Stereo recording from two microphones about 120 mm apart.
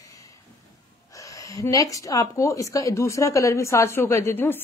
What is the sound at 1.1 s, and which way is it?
A woman's voice, 25° left (ahead or behind).